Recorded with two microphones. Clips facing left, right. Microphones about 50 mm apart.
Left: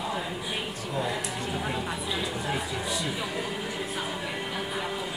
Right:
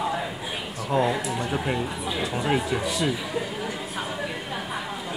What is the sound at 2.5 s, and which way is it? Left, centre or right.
Speech, right.